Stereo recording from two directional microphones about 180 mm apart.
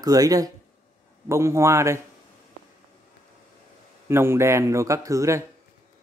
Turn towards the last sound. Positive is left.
turn(degrees=-15)  # may be behind; listen again after turning